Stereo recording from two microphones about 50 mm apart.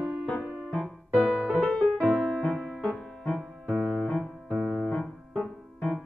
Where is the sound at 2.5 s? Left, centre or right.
Centre.